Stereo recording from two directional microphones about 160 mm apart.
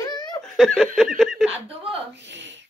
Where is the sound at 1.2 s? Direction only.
Centre (ahead or behind).